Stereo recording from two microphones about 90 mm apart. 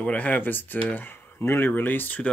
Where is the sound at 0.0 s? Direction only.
15° left (ahead or behind).